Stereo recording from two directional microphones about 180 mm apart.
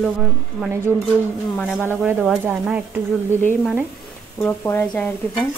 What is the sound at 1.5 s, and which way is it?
Speech, 10° left (ahead or behind).